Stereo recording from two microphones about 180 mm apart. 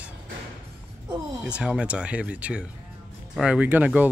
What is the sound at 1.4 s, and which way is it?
Speech, 5° right (ahead or behind).